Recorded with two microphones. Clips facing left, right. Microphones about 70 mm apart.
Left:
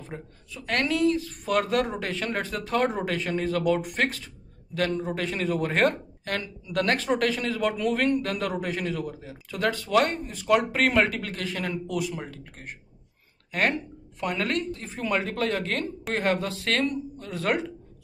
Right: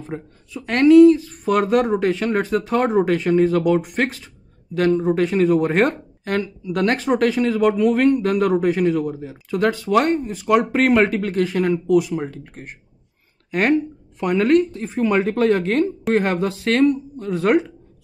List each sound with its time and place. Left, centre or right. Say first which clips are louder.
0.0 s a woman's voice: right 8 dB; right